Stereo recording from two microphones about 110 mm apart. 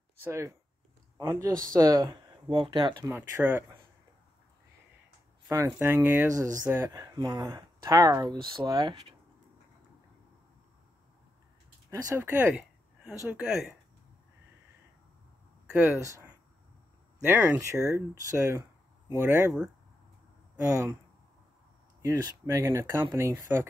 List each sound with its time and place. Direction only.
0.2 s speech: 25° right (ahead or behind)
1.3 s speech: 35° right (ahead or behind)
3.2 s speech: 20° right (ahead or behind)
5.7 s speech: 20° right (ahead or behind)
6.8 s speech: 35° right (ahead or behind)
11.9 s speech: 30° right (ahead or behind)
12.2 s speech: 20° right (ahead or behind)
13.4 s speech: 5° right (ahead or behind)
15.7 s speech: 20° right (ahead or behind)
20.6 s speech: 30° right (ahead or behind)
22.0 s speech: 30° right (ahead or behind)